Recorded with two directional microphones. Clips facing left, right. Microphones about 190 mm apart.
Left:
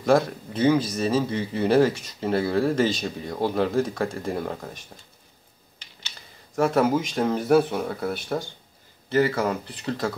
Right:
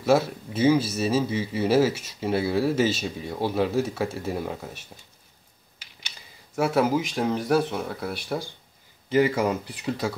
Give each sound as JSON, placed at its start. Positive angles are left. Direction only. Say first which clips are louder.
{"t": 0.0, "sound": "speech", "louder": "left 1 dB", "side_deg": -5}
{"t": 9.1, "sound": "speech", "louder": "right 1 dB", "side_deg": -15}